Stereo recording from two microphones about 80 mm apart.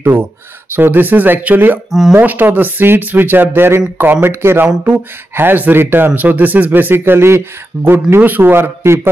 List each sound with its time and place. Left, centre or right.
0.0 s speech: right
1.9 s speech: centre
2.1 s speech: right